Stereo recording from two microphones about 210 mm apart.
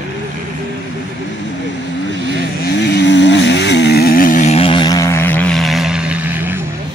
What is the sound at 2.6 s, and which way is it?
Vehicle, 55° left (ahead or behind).